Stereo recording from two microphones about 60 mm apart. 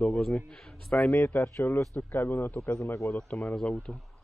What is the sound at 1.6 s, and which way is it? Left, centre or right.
Speech, left.